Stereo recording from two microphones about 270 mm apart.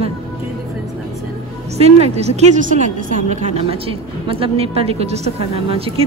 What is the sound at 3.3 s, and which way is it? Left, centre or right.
A woman's voice, right.